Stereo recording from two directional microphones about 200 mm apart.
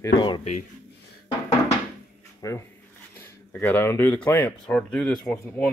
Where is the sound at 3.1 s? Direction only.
10° left (ahead or behind).